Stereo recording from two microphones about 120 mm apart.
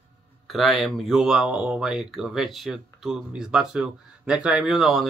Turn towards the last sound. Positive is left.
turn(degrees=0)  # may be behind; listen again after turning